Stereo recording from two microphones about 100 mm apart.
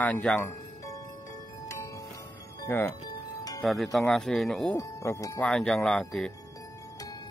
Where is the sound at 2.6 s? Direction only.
20° left (ahead or behind).